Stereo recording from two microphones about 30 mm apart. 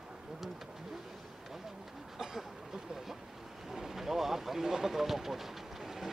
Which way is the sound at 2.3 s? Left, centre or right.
Centre.